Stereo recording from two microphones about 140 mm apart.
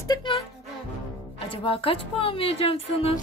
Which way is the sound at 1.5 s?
40° left (ahead or behind).